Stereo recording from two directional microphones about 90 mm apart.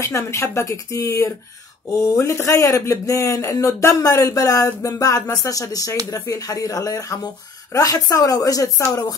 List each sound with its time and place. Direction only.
0.0 s speech: 35° left (ahead or behind)